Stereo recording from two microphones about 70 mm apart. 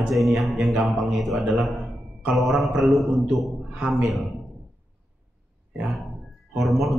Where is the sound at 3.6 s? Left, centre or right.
Centre.